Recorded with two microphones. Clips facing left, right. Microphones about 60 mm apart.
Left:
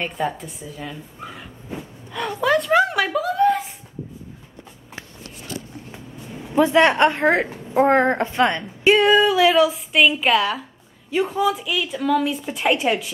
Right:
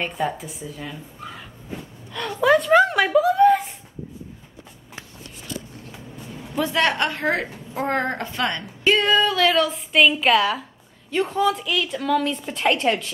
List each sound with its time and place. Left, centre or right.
0.0 s dog: centre
2.4 s a sound: centre
5.9 s a woman's voice: left
8.9 s a woman's voice: centre